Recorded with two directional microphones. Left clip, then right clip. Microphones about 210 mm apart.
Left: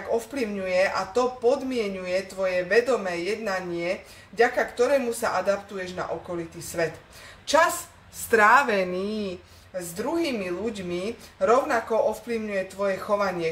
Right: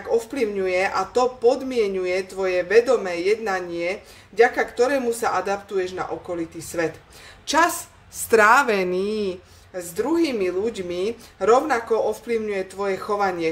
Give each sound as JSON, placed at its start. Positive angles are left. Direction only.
{"t": 0.3, "sound": "a woman's voice", "side_deg": -50}